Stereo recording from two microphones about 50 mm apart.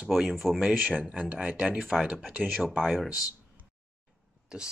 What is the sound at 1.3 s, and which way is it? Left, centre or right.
Speech, centre.